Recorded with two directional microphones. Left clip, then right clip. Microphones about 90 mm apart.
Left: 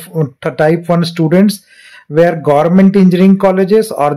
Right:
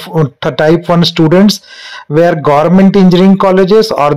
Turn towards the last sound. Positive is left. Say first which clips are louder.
# right 3 dB
turn(degrees=-30)  # may be behind; listen again after turning